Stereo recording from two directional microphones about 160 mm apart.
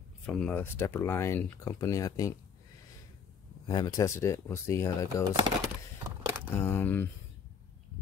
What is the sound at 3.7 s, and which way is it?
Speech, 25° left (ahead or behind).